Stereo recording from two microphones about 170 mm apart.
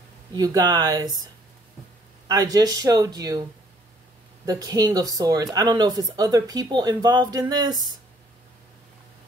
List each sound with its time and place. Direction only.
0.3 s speech: 20° right (ahead or behind)
4.5 s speech: 20° right (ahead or behind)